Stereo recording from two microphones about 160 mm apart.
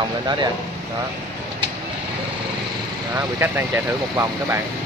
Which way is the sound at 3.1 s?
15° right (ahead or behind).